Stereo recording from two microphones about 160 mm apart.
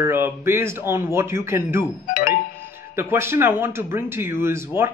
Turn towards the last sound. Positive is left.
turn(degrees=-15)  # may be behind; listen again after turning